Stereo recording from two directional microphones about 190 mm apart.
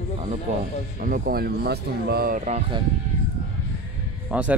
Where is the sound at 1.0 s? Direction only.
50° right (ahead or behind).